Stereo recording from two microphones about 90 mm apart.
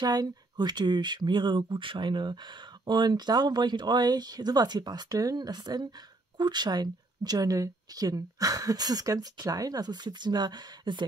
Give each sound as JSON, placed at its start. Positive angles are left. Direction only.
{"t": 0.0, "sound": "speech", "side_deg": -45}